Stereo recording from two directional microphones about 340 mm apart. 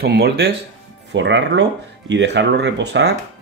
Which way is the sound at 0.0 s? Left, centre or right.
Right.